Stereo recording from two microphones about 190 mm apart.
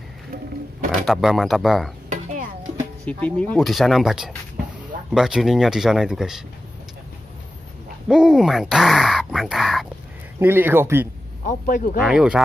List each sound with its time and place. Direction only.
1.0 s speech: centre (ahead or behind)
3.1 s speech: 5° left (ahead or behind)
8.1 s speech: 5° right (ahead or behind)
10.4 s speech: 10° right (ahead or behind)
11.4 s speech: 45° left (ahead or behind)
12.1 s speech: 5° right (ahead or behind)